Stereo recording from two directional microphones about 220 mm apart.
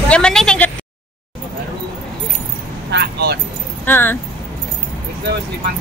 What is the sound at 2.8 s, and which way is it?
Keys jangling, 50° right (ahead or behind).